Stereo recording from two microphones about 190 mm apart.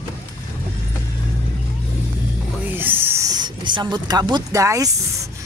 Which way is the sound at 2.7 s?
10° right (ahead or behind).